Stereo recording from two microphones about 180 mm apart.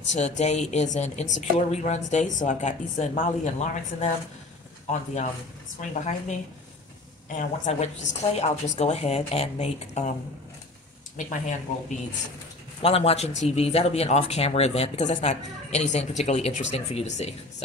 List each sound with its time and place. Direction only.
0.1 s a woman's voice: 40° left (ahead or behind)
7.3 s a woman's voice: 40° left (ahead or behind)
11.1 s speech: 45° left (ahead or behind)
12.8 s a woman's voice: 35° left (ahead or behind)